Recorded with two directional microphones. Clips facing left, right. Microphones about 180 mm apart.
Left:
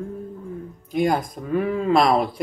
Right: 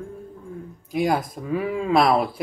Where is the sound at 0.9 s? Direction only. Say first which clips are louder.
Left 1 dB; 5° right (ahead or behind).